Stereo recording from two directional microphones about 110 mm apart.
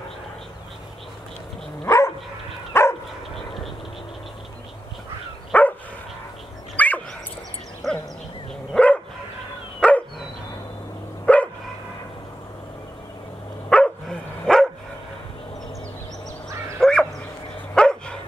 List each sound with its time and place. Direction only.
2.7 s dog: 25° left (ahead or behind)
5.5 s dog: 15° left (ahead or behind)
6.8 s dog: 15° left (ahead or behind)
7.8 s a sound: centre (ahead or behind)
8.7 s dog: 10° left (ahead or behind)
11.3 s dog: 10° left (ahead or behind)
13.7 s dog: 5° left (ahead or behind)
16.4 s dog: 25° right (ahead or behind)
16.8 s bow-wow: centre (ahead or behind)
17.7 s dog: 10° left (ahead or behind)